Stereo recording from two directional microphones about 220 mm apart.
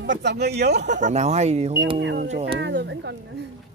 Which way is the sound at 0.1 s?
50° right (ahead or behind).